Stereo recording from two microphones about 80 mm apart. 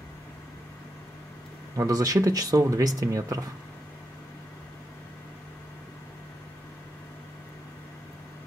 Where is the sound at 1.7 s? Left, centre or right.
Right.